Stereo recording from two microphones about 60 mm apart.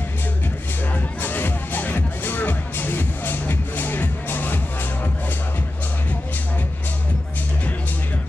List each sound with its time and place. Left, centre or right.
0.9 s music: left